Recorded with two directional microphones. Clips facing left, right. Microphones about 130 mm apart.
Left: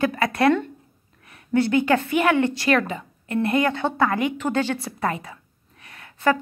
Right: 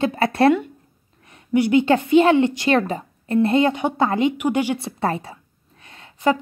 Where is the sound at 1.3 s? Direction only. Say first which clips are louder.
Right 3 dB; 15° right (ahead or behind).